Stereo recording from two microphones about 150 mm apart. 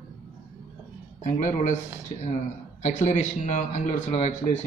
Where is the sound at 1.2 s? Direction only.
55° left (ahead or behind).